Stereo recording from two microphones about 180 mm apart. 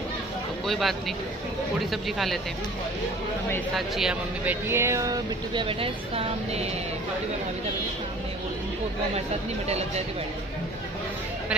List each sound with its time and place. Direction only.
0.7 s speech: centre (ahead or behind)
3.7 s speech: centre (ahead or behind); by 6.7 s 35° right (ahead or behind)
9.7 s speech: 35° right (ahead or behind)